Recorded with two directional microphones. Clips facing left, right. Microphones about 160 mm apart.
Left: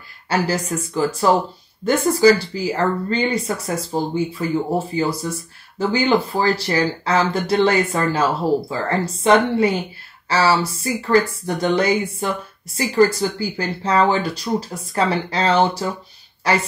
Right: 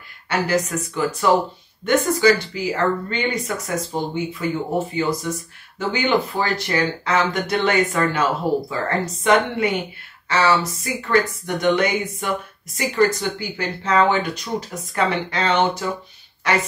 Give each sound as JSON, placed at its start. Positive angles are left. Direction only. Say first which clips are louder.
{"t": 0.3, "sound": "speech", "louder": "even", "side_deg": 35}